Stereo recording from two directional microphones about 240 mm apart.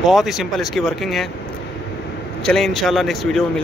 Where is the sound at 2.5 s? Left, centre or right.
Centre.